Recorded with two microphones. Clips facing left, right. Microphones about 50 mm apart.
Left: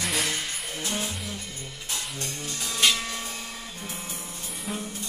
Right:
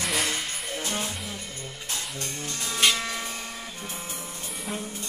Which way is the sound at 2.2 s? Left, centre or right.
Right.